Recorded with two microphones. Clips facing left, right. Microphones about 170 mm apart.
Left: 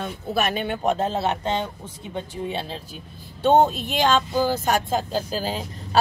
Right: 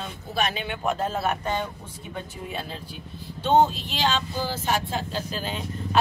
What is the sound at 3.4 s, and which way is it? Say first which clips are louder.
Speech: left 3 dB; 50° left (ahead or behind).